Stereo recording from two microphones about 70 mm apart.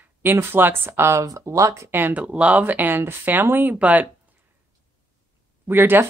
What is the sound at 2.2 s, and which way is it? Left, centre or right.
Speech, centre.